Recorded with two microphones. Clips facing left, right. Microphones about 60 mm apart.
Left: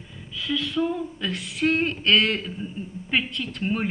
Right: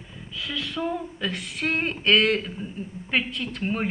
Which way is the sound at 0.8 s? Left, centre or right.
Centre.